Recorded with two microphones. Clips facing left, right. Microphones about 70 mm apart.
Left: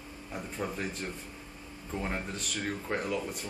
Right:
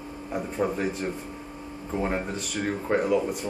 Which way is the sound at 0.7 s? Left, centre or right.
Centre.